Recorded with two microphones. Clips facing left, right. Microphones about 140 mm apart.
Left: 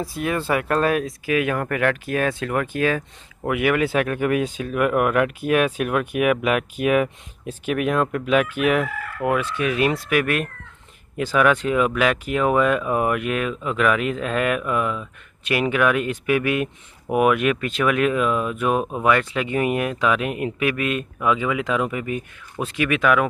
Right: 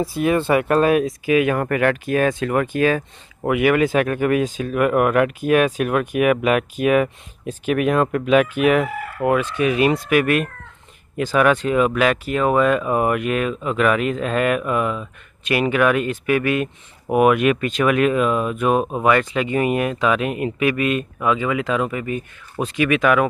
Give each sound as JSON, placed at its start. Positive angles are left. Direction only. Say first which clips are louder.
{"t": 0.0, "sound": "speech", "louder": "right 6 dB", "side_deg": 0}
{"t": 11.6, "sound": "speech", "louder": "right 2 dB", "side_deg": 5}
{"t": 18.8, "sound": "speech", "louder": "right 3 dB", "side_deg": -20}
{"t": 19.0, "sound": "speech", "louder": "right 1 dB", "side_deg": 0}